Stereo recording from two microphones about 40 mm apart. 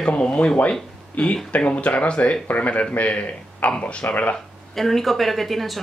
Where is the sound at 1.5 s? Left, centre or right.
Left.